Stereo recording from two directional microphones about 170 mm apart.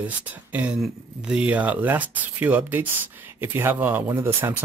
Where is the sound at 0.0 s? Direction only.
10° right (ahead or behind).